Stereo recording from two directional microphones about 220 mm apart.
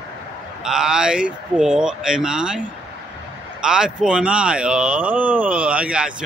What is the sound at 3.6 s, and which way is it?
Speech, 5° right (ahead or behind).